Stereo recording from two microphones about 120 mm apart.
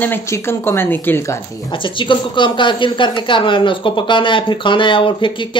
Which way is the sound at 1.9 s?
40° left (ahead or behind).